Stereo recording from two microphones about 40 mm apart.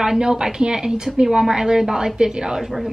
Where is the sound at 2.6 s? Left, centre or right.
Centre.